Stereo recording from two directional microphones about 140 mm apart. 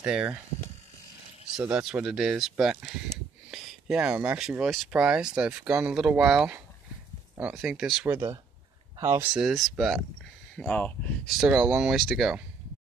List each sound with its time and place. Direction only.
0.0 s speech: 5° right (ahead or behind)
1.6 s speech: 5° right (ahead or behind)
8.1 s speech: 20° right (ahead or behind)
9.3 s speech: centre (ahead or behind)
11.3 s speech: centre (ahead or behind)